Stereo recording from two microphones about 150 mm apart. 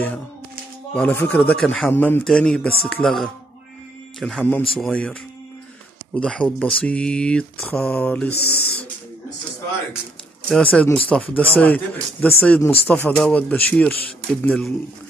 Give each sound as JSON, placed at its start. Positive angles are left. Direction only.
{"t": 0.9, "sound": "speech", "side_deg": 10}
{"t": 6.1, "sound": "speech", "side_deg": 5}
{"t": 10.5, "sound": "speech", "side_deg": 5}